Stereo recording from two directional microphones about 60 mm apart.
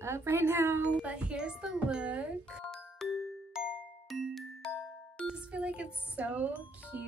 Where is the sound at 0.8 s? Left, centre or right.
Centre.